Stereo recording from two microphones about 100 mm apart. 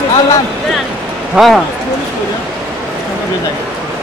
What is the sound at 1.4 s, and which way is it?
Speech, centre (ahead or behind).